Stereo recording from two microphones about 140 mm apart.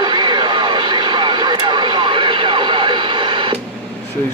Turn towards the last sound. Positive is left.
turn(degrees=-35)  # may be behind; listen again after turning